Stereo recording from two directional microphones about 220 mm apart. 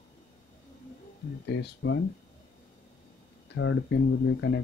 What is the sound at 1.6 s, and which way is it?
Speech, 55° left (ahead or behind).